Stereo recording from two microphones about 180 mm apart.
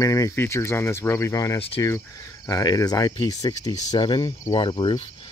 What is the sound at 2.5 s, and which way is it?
Speech, 20° left (ahead or behind).